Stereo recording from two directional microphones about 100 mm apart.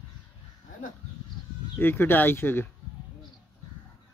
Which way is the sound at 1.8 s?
20° left (ahead or behind).